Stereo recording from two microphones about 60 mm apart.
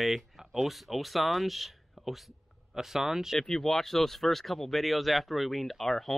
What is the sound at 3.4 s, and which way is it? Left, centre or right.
Speech, centre.